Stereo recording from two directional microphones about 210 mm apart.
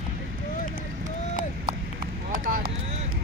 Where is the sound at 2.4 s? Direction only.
40° right (ahead or behind).